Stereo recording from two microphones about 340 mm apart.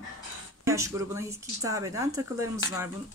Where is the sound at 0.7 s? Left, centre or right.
Centre.